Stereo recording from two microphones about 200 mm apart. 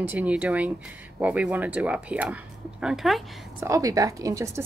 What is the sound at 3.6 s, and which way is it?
A woman's voice, 15° right (ahead or behind).